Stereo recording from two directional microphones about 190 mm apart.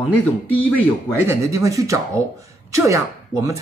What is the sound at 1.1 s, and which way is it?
Speech, 10° right (ahead or behind).